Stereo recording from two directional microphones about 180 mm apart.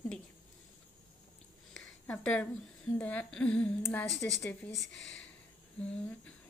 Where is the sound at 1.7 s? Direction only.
5° left (ahead or behind).